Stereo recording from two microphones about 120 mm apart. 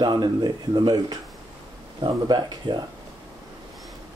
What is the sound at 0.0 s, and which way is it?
Speech, 40° right (ahead or behind).